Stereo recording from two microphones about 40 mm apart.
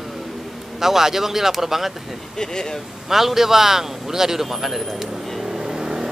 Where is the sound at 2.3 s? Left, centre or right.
Centre.